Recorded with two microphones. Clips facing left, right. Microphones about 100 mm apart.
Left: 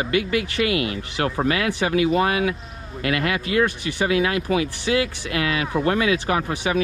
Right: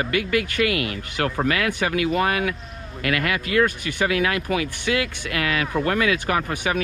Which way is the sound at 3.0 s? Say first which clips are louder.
Left 1 dB; 30° left (ahead or behind).